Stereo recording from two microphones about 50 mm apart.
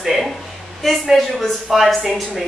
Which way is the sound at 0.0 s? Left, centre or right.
Centre.